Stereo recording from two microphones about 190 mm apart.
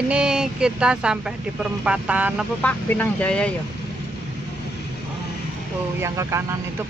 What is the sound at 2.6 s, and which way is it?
Speech, 10° left (ahead or behind).